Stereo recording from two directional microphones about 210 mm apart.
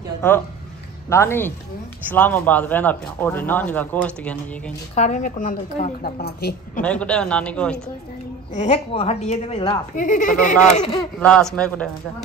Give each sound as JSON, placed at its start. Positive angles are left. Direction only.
{"t": 1.1, "sound": "speech", "side_deg": 10}
{"t": 4.9, "sound": "a woman's voice", "side_deg": 35}
{"t": 6.8, "sound": "speech", "side_deg": 5}
{"t": 8.5, "sound": "a woman's voice", "side_deg": 30}
{"t": 9.9, "sound": "a woman's voice", "side_deg": 40}
{"t": 11.1, "sound": "speech", "side_deg": 5}